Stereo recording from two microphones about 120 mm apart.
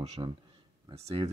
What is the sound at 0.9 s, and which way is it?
Speech, 55° right (ahead or behind).